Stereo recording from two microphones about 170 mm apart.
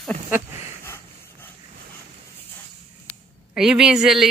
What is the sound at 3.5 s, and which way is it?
Speech, 5° right (ahead or behind).